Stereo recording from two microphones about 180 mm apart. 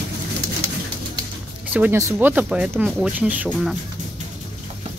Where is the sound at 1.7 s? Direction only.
10° right (ahead or behind).